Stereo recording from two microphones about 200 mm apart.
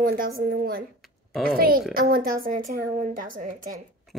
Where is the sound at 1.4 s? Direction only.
50° right (ahead or behind).